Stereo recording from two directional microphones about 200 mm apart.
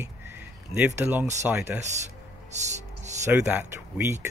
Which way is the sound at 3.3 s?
10° right (ahead or behind).